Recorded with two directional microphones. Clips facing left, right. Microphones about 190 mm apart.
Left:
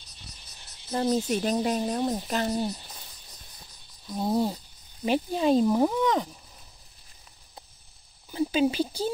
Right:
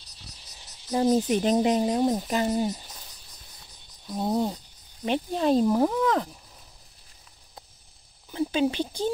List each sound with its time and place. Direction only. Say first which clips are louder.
0.9 s speech: right 3 dB; 15° right (ahead or behind)
4.1 s speech: even; centre (ahead or behind)
8.3 s speech: left 1 dB; 5° left (ahead or behind)